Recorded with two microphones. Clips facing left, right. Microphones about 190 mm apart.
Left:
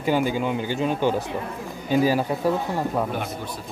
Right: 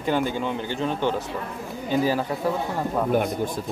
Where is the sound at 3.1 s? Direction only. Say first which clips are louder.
Right 7 dB; 45° right (ahead or behind).